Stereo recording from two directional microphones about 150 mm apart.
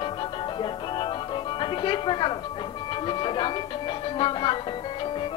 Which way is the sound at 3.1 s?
30° left (ahead or behind).